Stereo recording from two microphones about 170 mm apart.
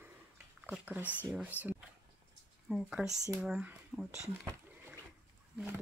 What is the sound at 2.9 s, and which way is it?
Speech, 5° right (ahead or behind).